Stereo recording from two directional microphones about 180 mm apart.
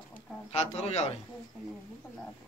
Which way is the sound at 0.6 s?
35° left (ahead or behind).